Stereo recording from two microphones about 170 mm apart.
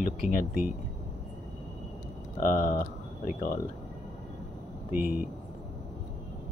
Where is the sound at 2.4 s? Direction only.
55° left (ahead or behind).